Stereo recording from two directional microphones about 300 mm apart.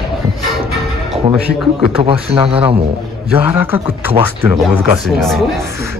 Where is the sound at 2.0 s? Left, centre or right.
Centre.